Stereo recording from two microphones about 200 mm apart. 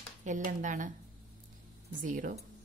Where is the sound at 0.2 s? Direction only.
40° right (ahead or behind).